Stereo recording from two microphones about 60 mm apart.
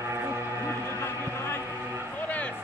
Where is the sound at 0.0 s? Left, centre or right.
Right.